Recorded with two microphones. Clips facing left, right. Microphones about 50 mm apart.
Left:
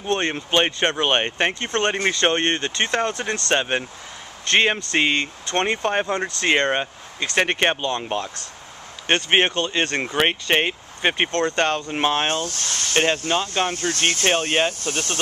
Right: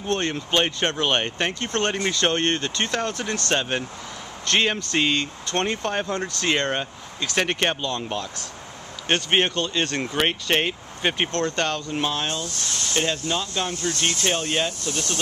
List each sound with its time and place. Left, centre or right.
0.0 s speech: left
9.3 s speech: left
11.9 s speech: left